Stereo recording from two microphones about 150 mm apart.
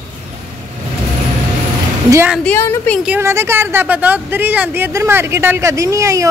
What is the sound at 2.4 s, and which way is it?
Speech, 15° left (ahead or behind).